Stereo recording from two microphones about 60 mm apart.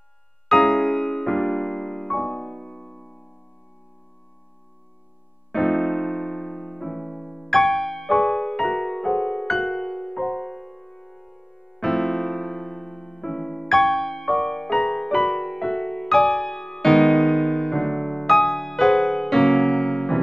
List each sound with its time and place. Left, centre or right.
0.5 s music: centre
5.5 s electric piano: centre